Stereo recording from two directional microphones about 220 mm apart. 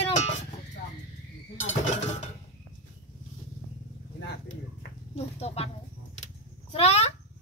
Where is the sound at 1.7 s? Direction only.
30° left (ahead or behind).